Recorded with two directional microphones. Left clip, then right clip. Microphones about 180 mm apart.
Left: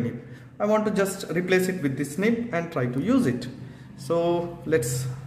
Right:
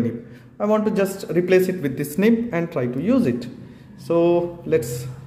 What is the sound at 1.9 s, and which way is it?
A man's voice, 30° right (ahead or behind).